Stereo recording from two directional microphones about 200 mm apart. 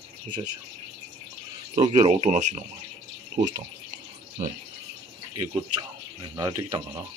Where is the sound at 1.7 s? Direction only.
35° right (ahead or behind).